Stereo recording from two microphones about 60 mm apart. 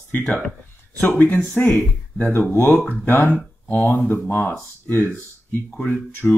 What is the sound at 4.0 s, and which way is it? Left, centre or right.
Speech, left.